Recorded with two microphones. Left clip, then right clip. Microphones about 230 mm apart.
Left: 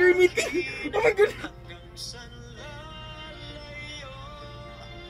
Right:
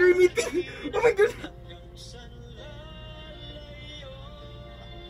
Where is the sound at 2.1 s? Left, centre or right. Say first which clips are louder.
Left 3 dB; left.